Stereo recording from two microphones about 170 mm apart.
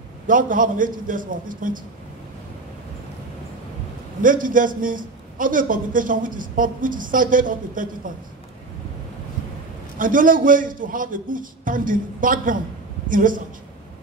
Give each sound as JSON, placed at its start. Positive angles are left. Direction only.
{"t": 0.3, "sound": "a man's voice", "side_deg": -50}
{"t": 4.2, "sound": "a man's voice", "side_deg": -50}
{"t": 9.9, "sound": "a man's voice", "side_deg": -50}